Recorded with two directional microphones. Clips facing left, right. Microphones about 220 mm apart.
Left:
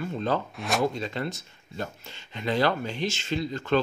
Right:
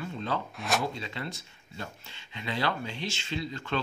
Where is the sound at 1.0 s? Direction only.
45° left (ahead or behind).